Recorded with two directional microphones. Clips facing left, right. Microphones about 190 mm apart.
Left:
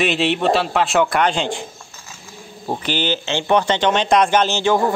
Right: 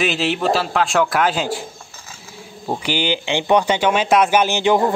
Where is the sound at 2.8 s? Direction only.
10° right (ahead or behind).